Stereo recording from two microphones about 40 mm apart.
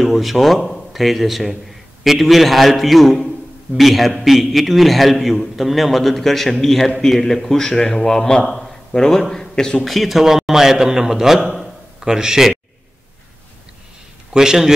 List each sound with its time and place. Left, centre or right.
0.0 s a man's voice: centre
8.5 s a sound: centre
8.9 s a man's voice: centre
9.8 s a man's voice: centre
14.3 s a man's voice: centre